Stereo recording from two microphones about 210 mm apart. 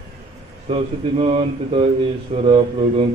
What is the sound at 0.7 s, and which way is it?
Speech, 25° right (ahead or behind).